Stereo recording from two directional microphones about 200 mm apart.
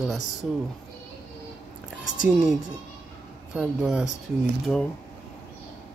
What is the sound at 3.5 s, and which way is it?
Speech, 5° right (ahead or behind).